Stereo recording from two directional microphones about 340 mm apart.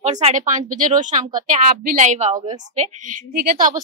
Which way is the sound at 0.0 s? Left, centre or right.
Centre.